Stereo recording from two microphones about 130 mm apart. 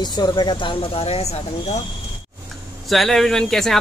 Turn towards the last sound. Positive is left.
turn(degrees=5)  # may be behind; listen again after turning